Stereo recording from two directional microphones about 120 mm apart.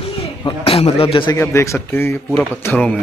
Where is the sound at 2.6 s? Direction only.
10° left (ahead or behind).